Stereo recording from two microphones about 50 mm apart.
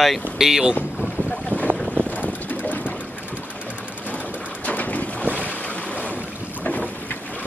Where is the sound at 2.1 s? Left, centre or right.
Left.